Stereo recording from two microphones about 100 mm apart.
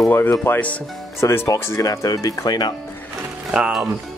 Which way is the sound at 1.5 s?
35° left (ahead or behind).